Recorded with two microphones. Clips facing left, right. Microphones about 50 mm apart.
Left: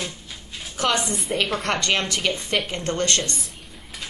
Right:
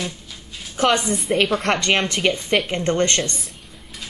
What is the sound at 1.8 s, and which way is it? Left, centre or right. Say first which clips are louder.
Speech: right 4 dB; right.